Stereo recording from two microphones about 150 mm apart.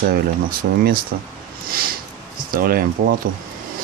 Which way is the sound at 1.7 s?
75° right (ahead or behind).